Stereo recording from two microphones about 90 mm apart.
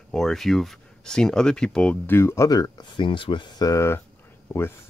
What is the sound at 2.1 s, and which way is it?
Speech, 30° left (ahead or behind).